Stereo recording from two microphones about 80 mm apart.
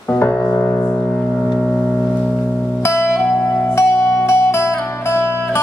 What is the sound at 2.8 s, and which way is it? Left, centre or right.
Music, left.